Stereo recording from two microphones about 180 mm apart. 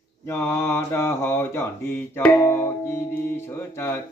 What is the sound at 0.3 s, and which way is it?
Mantra, 15° left (ahead or behind).